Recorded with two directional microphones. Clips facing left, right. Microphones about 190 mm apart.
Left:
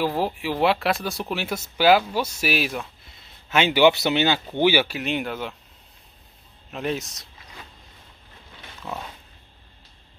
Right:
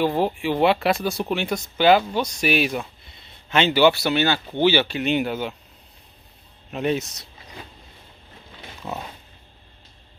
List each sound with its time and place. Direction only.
0.0 s speech: centre (ahead or behind)
6.7 s speech: centre (ahead or behind)
8.8 s pig: 15° right (ahead or behind)